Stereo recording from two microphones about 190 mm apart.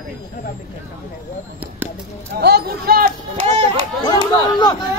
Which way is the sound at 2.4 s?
60° right (ahead or behind).